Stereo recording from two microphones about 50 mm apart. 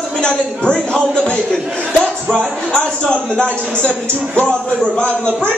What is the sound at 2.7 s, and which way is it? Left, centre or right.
A man's voice, centre.